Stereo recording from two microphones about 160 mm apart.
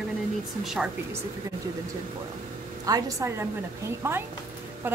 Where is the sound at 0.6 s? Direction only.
Centre (ahead or behind).